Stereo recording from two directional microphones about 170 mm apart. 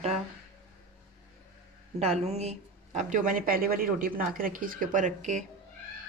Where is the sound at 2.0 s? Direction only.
40° right (ahead or behind).